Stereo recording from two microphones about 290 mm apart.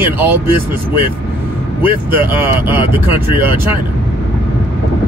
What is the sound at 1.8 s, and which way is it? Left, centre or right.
Speech, centre.